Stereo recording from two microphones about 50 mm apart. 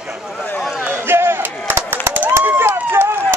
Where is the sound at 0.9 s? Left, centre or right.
Right.